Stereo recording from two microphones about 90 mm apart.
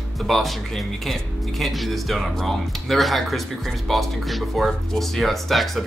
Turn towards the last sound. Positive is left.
turn(degrees=0)  # may be behind; listen again after turning